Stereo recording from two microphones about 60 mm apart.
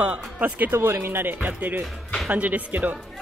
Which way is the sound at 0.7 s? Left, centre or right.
Right.